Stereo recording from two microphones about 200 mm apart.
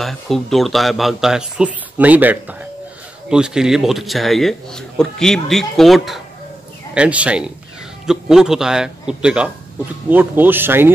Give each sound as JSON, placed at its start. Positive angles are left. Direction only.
{"t": 0.0, "sound": "a man's voice", "side_deg": 0}